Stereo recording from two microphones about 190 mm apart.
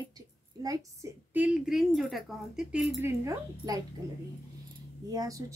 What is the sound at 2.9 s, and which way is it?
Speech, 15° right (ahead or behind).